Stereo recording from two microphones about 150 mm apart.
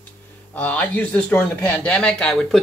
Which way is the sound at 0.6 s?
10° left (ahead or behind).